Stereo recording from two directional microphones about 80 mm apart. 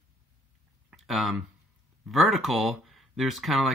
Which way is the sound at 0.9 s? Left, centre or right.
Centre.